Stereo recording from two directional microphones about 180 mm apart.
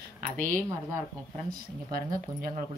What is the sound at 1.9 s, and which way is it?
Speech, 55° right (ahead or behind).